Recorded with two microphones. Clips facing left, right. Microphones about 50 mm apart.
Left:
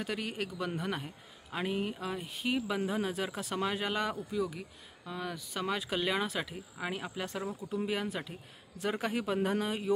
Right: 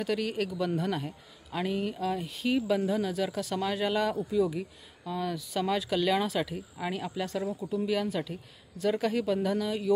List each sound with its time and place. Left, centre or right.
0.0 s speech: centre